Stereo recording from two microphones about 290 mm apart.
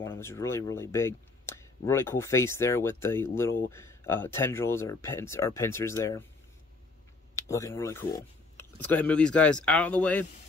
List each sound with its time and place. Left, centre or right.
0.0 s speech: centre
7.3 s speech: centre